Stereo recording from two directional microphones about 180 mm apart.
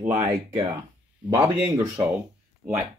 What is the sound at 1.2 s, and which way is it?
Speech, 5° right (ahead or behind).